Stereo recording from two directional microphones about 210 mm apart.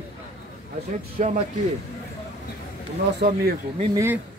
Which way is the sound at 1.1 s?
35° right (ahead or behind).